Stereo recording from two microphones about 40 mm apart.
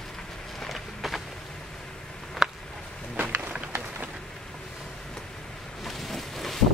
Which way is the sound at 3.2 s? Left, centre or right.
Right.